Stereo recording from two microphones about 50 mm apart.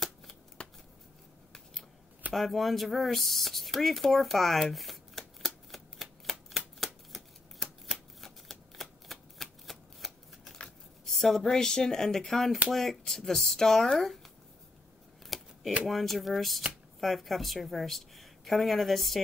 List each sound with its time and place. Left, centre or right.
0.6 s shuffling cards: left
2.3 s a sound: centre
11.1 s a woman's voice: centre
15.2 s shuffling cards: centre
15.9 s a woman's voice: centre